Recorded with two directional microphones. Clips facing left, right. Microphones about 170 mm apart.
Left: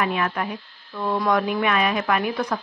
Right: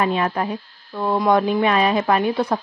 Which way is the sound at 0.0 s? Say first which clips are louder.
Right 4 dB; 30° right (ahead or behind).